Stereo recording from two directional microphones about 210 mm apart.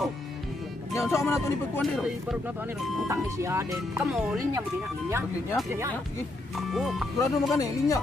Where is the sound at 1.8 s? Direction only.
Centre (ahead or behind).